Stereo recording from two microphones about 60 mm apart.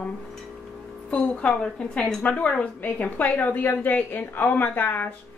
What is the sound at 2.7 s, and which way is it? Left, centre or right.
A woman's voice, left.